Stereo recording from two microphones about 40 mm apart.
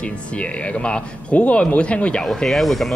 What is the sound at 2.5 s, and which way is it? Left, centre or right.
Speech, centre.